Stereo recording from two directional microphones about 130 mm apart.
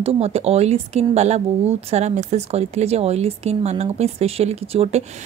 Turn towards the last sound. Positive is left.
turn(degrees=-55)  # may be behind; listen again after turning